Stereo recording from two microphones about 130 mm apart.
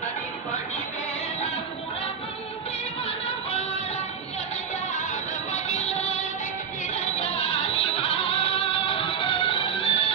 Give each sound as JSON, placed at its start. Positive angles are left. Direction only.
{"t": 5.5, "sound": "music", "side_deg": 55}